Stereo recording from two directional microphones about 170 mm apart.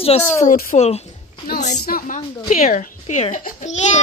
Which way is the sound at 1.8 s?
55° left (ahead or behind).